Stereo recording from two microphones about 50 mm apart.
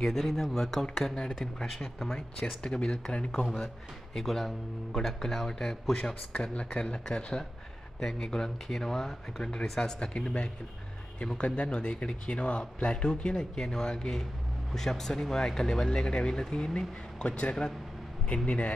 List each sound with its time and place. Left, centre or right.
0.0 s speech: centre
3.6 s speech: centre
6.3 s speech: left